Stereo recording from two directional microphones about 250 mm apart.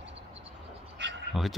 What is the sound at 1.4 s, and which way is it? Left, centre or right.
Speech, centre.